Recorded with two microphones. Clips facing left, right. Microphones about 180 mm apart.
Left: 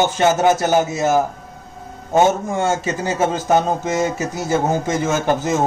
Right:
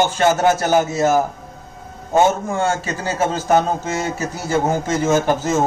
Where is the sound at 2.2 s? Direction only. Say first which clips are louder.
Left 1 dB; 20° left (ahead or behind).